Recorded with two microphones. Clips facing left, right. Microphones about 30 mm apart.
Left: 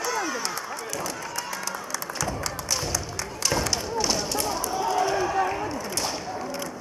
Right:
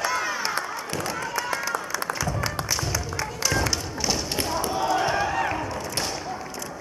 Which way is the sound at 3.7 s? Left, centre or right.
Centre.